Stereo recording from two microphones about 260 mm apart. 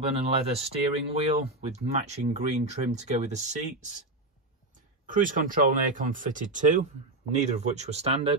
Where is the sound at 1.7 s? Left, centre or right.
Right.